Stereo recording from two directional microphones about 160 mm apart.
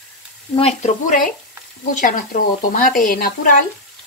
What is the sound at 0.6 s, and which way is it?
Speech, 40° left (ahead or behind).